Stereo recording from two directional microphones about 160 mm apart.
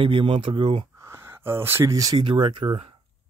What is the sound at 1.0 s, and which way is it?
Speech, 15° right (ahead or behind).